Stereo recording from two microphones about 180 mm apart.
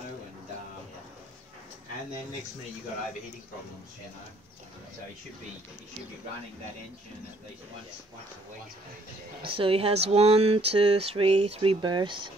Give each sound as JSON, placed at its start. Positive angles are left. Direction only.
{"t": 9.4, "sound": "speech", "side_deg": -30}